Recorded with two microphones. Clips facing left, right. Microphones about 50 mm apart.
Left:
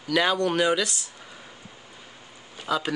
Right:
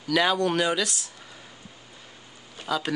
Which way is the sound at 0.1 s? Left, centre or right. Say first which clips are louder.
Even; centre.